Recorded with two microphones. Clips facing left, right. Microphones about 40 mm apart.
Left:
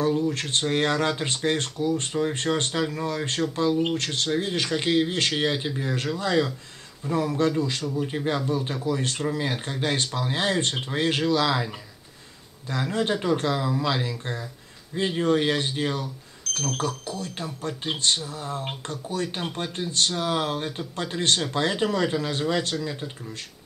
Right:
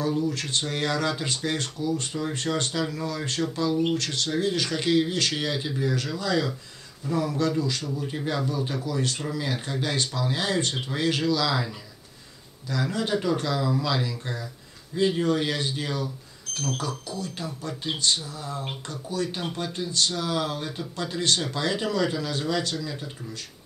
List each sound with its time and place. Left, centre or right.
0.2 s speech: left
12.9 s speech: left